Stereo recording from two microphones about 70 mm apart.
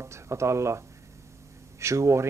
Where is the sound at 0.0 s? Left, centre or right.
Right.